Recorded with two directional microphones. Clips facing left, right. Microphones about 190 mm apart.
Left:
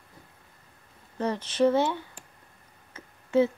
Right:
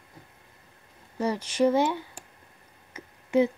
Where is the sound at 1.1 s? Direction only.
10° right (ahead or behind).